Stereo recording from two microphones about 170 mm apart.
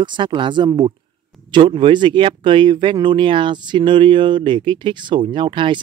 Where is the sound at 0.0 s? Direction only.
25° right (ahead or behind).